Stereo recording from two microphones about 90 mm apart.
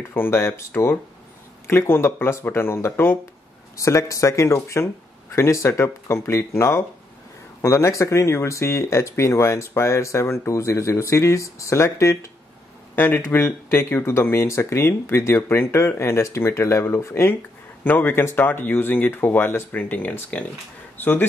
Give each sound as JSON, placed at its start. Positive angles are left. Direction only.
{"t": 0.1, "sound": "speech", "side_deg": 25}